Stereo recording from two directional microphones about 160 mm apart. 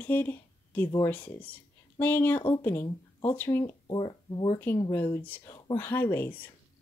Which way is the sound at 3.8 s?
30° left (ahead or behind).